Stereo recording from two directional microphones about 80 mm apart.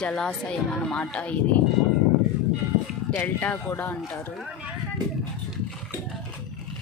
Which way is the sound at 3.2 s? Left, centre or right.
Left.